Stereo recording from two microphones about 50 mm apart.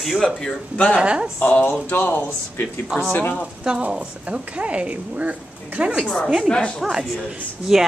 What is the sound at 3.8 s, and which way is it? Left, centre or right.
A woman's voice, right.